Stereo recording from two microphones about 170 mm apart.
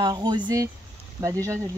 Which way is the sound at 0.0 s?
25° right (ahead or behind).